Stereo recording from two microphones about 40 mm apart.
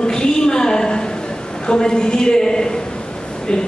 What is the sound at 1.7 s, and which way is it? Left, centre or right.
A woman's voice, centre.